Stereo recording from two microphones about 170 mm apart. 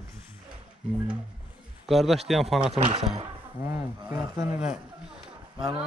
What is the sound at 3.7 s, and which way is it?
Speech, 15° right (ahead or behind).